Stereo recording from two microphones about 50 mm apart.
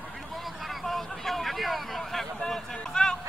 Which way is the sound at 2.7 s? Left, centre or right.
Centre.